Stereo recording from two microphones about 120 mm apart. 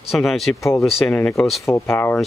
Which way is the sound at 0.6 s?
25° left (ahead or behind).